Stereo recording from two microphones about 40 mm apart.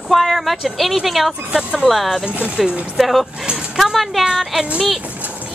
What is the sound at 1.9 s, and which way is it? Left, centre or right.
Speech, centre.